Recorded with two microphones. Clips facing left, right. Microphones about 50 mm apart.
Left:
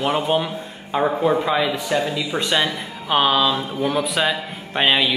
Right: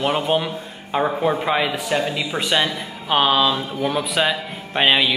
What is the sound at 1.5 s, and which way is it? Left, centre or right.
Speech, right.